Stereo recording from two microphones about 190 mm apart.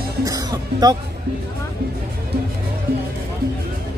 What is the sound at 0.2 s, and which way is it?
Music, 20° right (ahead or behind).